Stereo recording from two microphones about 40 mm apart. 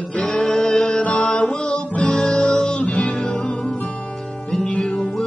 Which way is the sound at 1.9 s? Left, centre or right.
Left.